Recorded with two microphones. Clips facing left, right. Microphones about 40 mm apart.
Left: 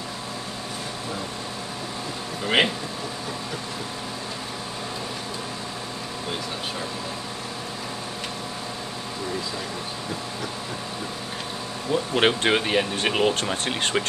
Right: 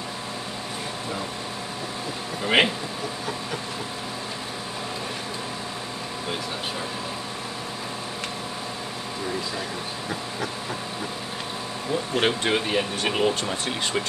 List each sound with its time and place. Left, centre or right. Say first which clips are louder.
2.4 s speech: right 1 dB; centre
11.9 s speech: left 3 dB; left